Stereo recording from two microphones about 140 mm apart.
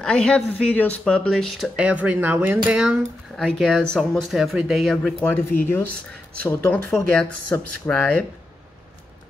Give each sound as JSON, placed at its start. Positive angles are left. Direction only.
{"t": 0.0, "sound": "speech", "side_deg": 5}
{"t": 3.3, "sound": "speech", "side_deg": 5}
{"t": 5.6, "sound": "speech", "side_deg": 15}